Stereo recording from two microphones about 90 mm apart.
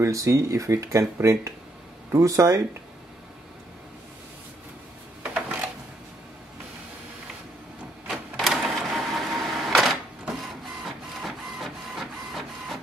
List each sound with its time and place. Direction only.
0.0 s speech: 35° right (ahead or behind)
5.2 s a sound: 10° right (ahead or behind)
8.1 s printer: centre (ahead or behind)
11.2 s printer: centre (ahead or behind)